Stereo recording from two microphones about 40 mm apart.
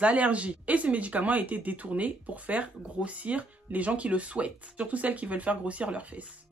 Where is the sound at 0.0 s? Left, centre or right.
Right.